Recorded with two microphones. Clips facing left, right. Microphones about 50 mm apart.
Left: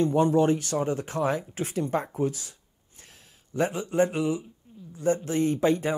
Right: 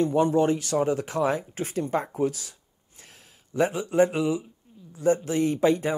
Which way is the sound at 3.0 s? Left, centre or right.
Right.